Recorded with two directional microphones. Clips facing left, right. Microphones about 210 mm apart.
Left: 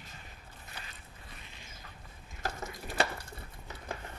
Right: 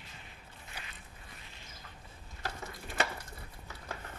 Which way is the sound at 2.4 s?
45° left (ahead or behind).